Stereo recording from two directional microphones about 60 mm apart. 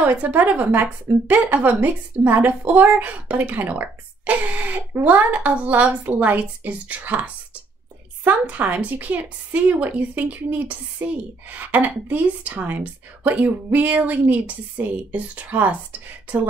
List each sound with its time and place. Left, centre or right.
0.0 s a woman's voice: right